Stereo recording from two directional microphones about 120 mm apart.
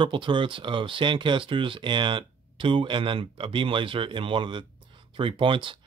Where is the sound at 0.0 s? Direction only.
45° right (ahead or behind).